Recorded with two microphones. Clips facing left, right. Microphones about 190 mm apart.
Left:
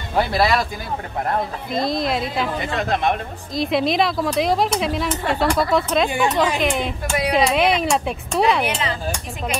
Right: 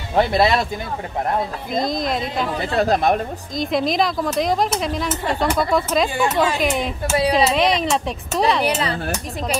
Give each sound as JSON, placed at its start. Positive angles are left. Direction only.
{"t": 0.1, "sound": "speech", "side_deg": -25}
{"t": 1.7, "sound": "a woman's voice", "side_deg": 0}
{"t": 2.6, "sound": "speech", "side_deg": -35}
{"t": 3.5, "sound": "a woman's voice", "side_deg": 0}
{"t": 6.0, "sound": "speech", "side_deg": 20}
{"t": 6.6, "sound": "a woman's voice", "side_deg": 0}
{"t": 7.2, "sound": "speech", "side_deg": -30}
{"t": 7.4, "sound": "a woman's voice", "side_deg": 5}
{"t": 8.6, "sound": "speech", "side_deg": -35}